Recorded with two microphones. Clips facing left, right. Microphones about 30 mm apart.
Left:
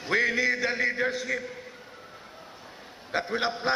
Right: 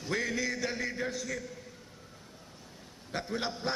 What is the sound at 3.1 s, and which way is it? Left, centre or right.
Speech, left.